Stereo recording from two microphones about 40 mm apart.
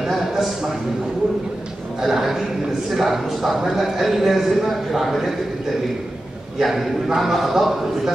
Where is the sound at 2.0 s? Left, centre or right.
Centre.